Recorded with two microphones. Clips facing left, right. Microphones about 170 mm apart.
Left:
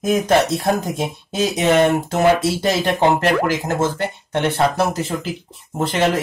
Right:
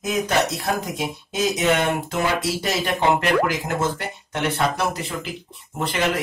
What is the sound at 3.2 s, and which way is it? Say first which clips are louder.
Speech: left 3 dB; 40° left (ahead or behind).